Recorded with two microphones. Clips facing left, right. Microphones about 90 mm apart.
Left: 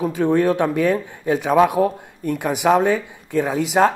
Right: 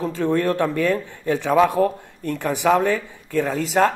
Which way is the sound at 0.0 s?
15° left (ahead or behind).